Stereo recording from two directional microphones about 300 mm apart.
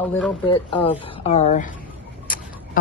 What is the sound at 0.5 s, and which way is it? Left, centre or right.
Speech, centre.